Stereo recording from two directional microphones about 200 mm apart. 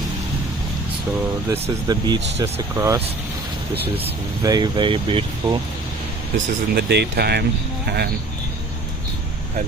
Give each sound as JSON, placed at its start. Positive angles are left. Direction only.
{"t": 1.5, "sound": "speech", "side_deg": -20}
{"t": 4.4, "sound": "speech", "side_deg": -20}
{"t": 6.3, "sound": "speech", "side_deg": -55}